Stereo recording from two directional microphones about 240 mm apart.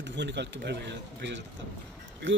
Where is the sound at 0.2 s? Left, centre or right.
Right.